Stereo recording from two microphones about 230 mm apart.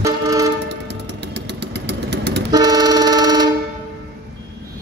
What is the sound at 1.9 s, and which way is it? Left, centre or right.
Vehicle, right.